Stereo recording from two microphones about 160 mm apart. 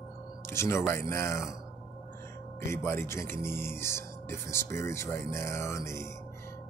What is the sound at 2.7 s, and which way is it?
Speech, 15° left (ahead or behind).